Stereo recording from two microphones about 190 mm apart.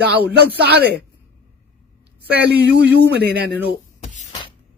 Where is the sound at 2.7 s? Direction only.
60° right (ahead or behind).